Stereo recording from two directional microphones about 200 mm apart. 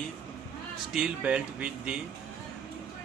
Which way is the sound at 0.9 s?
5° right (ahead or behind).